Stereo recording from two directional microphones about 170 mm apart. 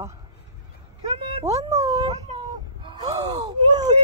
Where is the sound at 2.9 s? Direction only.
25° right (ahead or behind).